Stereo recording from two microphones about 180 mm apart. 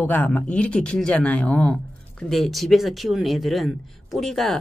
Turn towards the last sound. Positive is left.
turn(degrees=0)  # may be behind; listen again after turning